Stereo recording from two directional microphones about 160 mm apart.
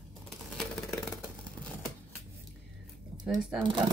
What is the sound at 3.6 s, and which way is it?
Speech, 30° right (ahead or behind).